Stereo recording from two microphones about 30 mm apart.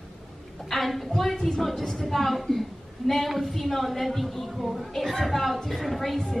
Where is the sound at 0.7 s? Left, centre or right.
Centre.